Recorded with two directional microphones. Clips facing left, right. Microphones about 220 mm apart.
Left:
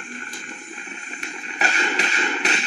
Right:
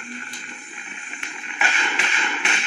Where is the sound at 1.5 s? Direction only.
40° left (ahead or behind).